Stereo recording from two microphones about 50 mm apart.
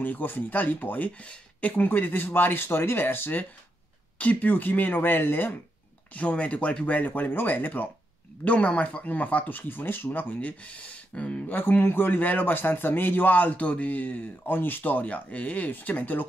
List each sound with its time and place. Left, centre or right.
0.0 s speech: left
1.8 s speech: left
4.2 s speech: left
6.1 s speech: left
10.4 s speech: left
11.5 s speech: left